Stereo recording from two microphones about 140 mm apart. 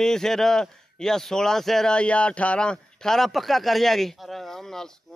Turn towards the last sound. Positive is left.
turn(degrees=5)  # may be behind; listen again after turning